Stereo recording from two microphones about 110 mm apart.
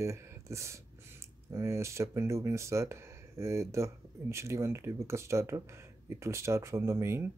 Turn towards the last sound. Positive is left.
turn(degrees=-20)  # may be behind; listen again after turning